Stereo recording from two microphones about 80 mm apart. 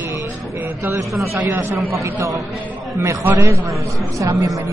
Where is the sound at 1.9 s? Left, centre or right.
Right.